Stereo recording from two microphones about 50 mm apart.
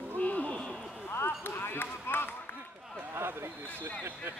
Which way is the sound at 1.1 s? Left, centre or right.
Left.